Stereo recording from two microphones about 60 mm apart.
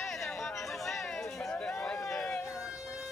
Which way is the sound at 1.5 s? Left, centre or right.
Left.